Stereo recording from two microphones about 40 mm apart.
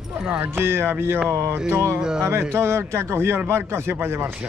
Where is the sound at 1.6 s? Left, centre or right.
Right.